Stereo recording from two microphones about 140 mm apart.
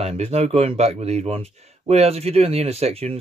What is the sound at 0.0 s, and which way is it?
Speech, 50° right (ahead or behind).